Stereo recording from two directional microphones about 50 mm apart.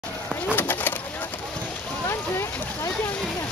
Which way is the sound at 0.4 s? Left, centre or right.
Left.